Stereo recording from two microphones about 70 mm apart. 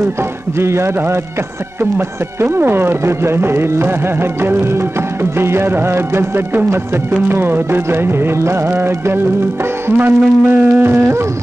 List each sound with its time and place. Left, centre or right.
0.6 s speech: right